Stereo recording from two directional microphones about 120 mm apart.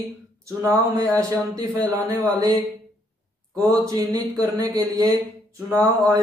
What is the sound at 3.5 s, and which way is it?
Speech, 30° right (ahead or behind).